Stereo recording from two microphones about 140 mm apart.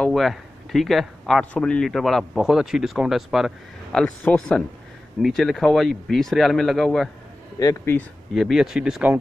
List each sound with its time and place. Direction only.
0.0 s speech: centre (ahead or behind)
7.5 s speech: 20° left (ahead or behind)
8.4 s speech: centre (ahead or behind)